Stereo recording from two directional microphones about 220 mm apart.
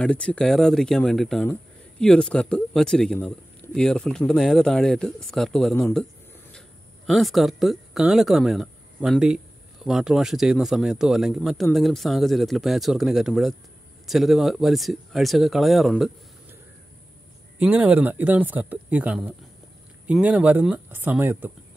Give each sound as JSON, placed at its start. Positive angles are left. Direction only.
{"t": 0.0, "sound": "speech", "side_deg": 5}
{"t": 7.1, "sound": "speech", "side_deg": 0}
{"t": 17.6, "sound": "speech", "side_deg": -5}